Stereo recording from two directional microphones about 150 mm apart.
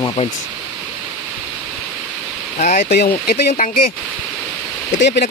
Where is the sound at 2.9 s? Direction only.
90° left.